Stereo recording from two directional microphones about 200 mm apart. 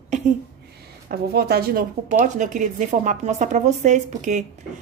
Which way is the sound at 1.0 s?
50° right (ahead or behind).